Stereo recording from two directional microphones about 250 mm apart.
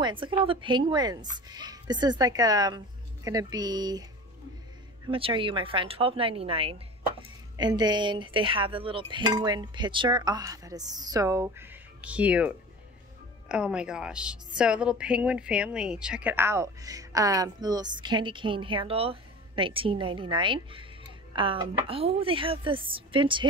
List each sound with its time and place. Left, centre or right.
0.0 s a woman's voice: centre
5.0 s a woman's voice: centre